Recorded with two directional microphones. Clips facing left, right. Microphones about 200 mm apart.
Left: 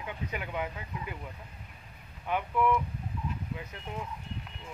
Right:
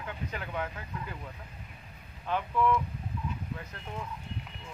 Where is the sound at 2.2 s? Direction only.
15° left (ahead or behind).